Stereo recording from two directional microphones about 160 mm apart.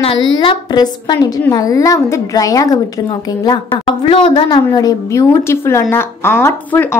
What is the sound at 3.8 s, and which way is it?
A woman's voice, 30° left (ahead or behind).